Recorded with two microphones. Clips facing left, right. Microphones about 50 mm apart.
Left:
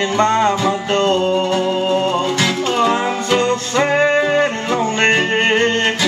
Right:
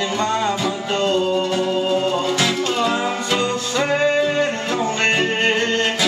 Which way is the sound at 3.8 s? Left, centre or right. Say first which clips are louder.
Left 3 dB; left.